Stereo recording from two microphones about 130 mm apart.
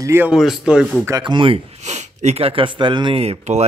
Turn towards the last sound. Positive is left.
turn(degrees=-55)  # may be behind; listen again after turning